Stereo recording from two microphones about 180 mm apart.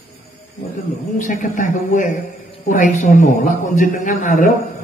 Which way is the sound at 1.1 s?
45° left (ahead or behind).